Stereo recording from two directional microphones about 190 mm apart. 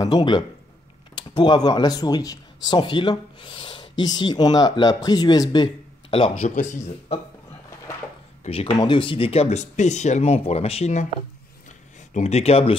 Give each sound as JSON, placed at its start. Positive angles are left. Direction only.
{"t": 0.0, "sound": "speech", "side_deg": 20}
{"t": 6.5, "sound": "speech", "side_deg": 40}
{"t": 8.5, "sound": "speech", "side_deg": 30}
{"t": 12.1, "sound": "speech", "side_deg": 35}